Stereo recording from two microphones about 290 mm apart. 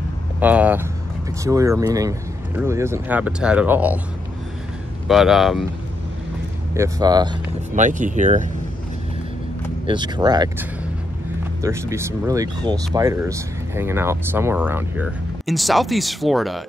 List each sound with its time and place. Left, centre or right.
0.4 s speech: centre
5.0 s speech: centre
6.7 s speech: centre
7.7 s speech: right
9.8 s speech: centre